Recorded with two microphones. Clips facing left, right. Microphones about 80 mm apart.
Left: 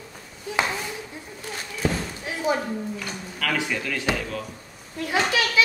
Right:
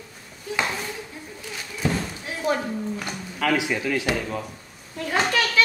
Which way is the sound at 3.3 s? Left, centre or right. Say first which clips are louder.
Right 4 dB; centre.